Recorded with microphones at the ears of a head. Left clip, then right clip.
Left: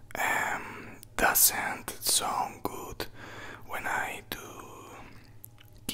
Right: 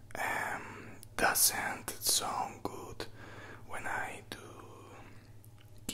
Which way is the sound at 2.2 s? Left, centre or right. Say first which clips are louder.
Left 5 dB; left.